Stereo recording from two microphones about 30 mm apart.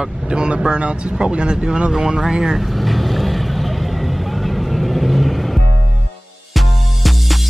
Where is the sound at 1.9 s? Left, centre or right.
Centre.